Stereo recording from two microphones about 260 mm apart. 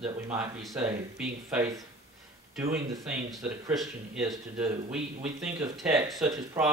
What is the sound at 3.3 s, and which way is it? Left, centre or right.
Speech, centre.